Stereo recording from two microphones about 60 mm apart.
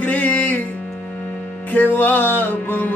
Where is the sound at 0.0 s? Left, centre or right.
Left.